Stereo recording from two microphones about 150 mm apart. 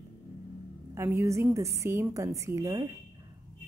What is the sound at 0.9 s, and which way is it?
A woman's voice, 20° right (ahead or behind).